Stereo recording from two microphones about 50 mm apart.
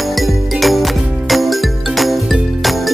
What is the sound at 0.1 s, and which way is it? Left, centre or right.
Music, centre.